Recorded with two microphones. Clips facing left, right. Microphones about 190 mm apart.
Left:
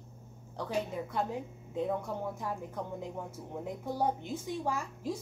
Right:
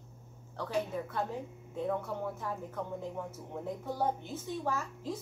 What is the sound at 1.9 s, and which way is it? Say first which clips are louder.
Speech: even; 15° left (ahead or behind).